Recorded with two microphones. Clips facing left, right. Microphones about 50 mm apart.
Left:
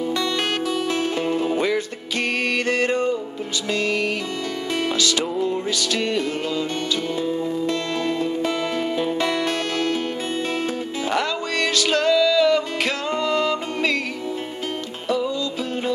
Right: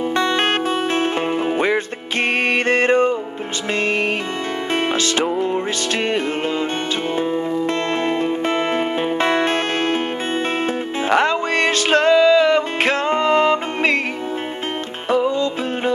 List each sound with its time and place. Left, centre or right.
0.1 s music: right
11.1 s music: right
15.0 s music: right